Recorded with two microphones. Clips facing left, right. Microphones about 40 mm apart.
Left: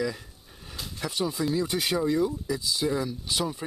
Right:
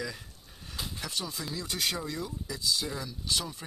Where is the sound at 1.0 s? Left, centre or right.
Centre.